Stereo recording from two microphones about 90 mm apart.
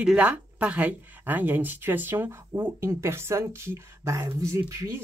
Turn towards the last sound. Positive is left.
turn(degrees=-35)  # may be behind; listen again after turning